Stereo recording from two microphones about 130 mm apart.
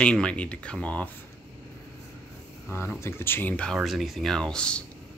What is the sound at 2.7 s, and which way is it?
Speech, 15° left (ahead or behind).